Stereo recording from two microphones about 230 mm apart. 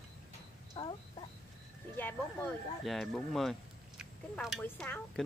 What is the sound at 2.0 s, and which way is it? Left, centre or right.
Speech, centre.